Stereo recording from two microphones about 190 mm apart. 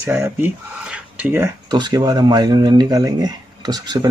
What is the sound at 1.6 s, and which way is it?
Speech, 20° right (ahead or behind).